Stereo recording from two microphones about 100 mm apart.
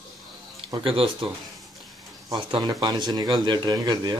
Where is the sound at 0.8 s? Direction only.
65° right (ahead or behind).